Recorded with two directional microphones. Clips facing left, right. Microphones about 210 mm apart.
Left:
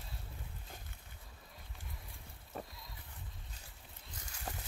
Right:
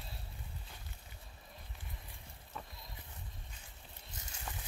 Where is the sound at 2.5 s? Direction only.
45° left (ahead or behind).